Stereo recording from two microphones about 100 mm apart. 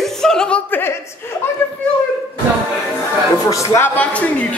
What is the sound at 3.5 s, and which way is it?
Speech, 30° left (ahead or behind).